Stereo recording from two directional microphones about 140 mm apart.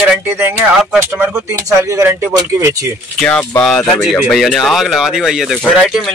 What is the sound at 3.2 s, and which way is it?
Speech, 5° left (ahead or behind).